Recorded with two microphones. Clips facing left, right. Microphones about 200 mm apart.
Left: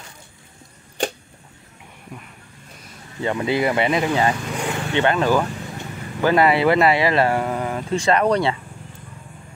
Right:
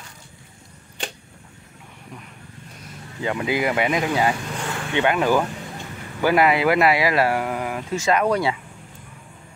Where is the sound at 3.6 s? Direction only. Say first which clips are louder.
Left 2 dB; 10° right (ahead or behind).